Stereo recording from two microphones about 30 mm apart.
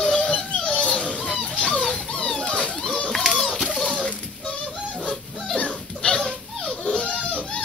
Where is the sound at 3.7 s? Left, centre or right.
Centre.